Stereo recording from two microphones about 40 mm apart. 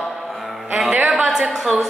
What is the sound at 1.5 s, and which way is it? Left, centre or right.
Speech, centre.